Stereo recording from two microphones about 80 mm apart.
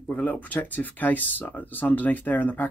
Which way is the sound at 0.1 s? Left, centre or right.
Left.